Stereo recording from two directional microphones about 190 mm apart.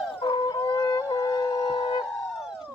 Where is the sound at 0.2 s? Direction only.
25° left (ahead or behind).